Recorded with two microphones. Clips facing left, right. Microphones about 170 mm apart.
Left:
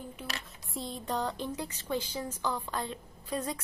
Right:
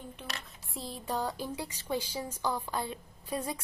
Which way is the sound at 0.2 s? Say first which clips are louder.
Left 2 dB; centre (ahead or behind).